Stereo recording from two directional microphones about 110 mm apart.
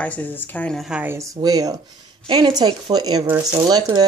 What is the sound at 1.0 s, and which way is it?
A woman's voice, 30° right (ahead or behind).